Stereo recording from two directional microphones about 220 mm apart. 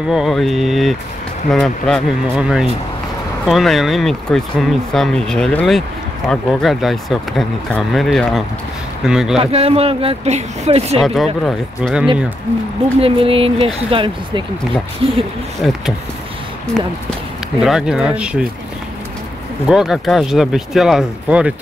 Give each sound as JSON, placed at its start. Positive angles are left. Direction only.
{"t": 0.1, "sound": "speech", "side_deg": 0}
{"t": 9.4, "sound": "speech", "side_deg": -25}
{"t": 11.4, "sound": "speech", "side_deg": 0}
{"t": 13.0, "sound": "speech", "side_deg": -25}
{"t": 15.6, "sound": "speech", "side_deg": 0}
{"t": 19.7, "sound": "speech", "side_deg": 0}